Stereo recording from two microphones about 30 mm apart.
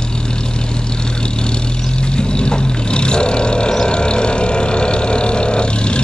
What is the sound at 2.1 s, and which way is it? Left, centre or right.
Vehicle, left.